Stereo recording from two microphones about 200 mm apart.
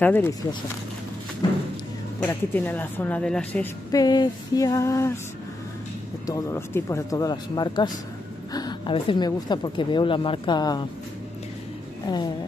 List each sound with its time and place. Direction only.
0.0 s speech: 10° left (ahead or behind)
2.1 s speech: 10° left (ahead or behind)
3.9 s speech: 20° left (ahead or behind)
6.2 s speech: 15° left (ahead or behind)
12.1 s speech: 20° left (ahead or behind)